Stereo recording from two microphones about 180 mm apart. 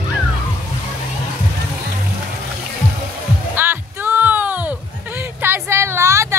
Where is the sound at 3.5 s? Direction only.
10° right (ahead or behind).